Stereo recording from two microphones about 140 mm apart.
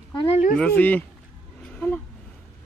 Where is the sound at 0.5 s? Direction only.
10° left (ahead or behind).